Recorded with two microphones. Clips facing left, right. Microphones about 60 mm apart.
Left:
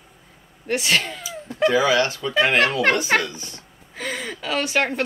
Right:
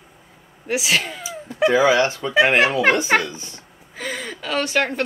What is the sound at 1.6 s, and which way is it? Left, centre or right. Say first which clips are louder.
Speech: right 2 dB; right.